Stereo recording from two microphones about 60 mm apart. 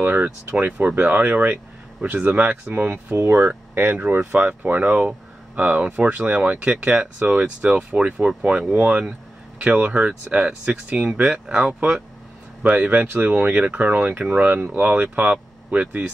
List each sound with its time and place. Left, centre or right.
0.0 s speech: right
3.2 s speech: right